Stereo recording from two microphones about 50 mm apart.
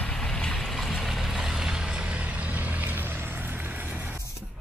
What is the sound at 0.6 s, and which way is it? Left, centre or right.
Vehicle, centre.